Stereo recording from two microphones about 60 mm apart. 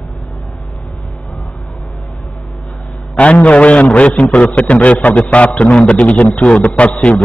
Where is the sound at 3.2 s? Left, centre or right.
Left.